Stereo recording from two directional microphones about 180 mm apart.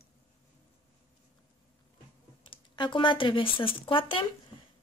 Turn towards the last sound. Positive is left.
turn(degrees=30)  # may be behind; listen again after turning